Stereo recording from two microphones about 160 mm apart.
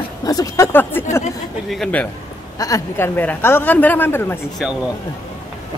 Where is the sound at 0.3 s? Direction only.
20° left (ahead or behind).